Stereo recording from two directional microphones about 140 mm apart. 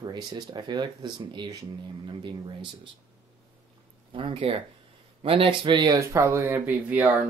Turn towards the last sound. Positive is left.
turn(degrees=-10)  # may be behind; listen again after turning